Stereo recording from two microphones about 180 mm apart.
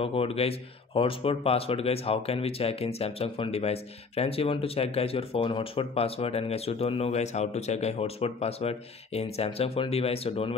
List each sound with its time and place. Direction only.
0.0 s speech: 30° left (ahead or behind)